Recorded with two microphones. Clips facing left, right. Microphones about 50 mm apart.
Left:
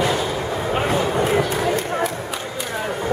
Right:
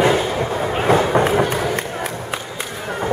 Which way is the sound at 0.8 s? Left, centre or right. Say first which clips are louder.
Right 8 dB; right.